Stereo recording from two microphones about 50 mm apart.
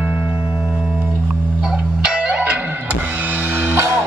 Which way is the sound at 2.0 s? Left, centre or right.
Centre.